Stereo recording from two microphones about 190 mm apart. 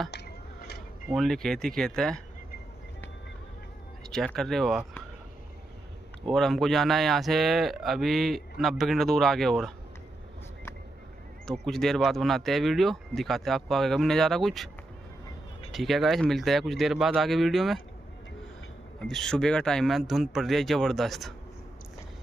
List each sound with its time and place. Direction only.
0.1 s a sound: 60° left (ahead or behind)
1.0 s speech: centre (ahead or behind)
4.1 s speech: centre (ahead or behind)
6.3 s speech: centre (ahead or behind)
11.6 s speech: centre (ahead or behind)
15.7 s speech: centre (ahead or behind)
19.0 s speech: 5° left (ahead or behind)